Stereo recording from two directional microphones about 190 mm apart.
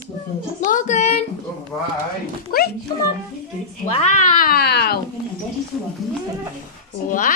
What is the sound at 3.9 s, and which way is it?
Cat, 40° left (ahead or behind).